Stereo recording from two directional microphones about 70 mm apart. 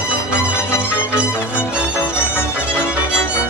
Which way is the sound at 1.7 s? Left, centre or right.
Centre.